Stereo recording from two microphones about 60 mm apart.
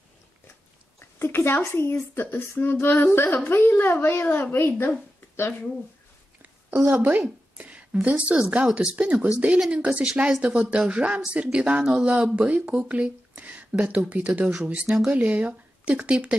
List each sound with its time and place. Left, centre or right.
0.9 s a sound: left
1.7 s a woman's voice: left
6.9 s speech: right